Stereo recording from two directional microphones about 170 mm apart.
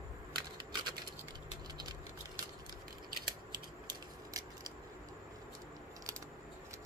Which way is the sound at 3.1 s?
25° right (ahead or behind).